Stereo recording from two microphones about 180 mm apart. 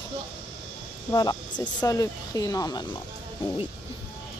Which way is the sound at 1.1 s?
20° left (ahead or behind).